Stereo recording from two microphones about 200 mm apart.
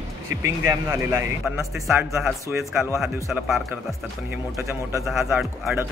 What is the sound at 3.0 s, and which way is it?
Speech, centre (ahead or behind).